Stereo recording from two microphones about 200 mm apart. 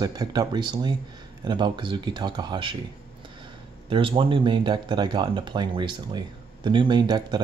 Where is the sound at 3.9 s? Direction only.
25° right (ahead or behind).